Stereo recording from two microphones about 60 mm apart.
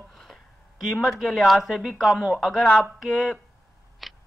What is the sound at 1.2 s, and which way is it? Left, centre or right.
Speech, centre.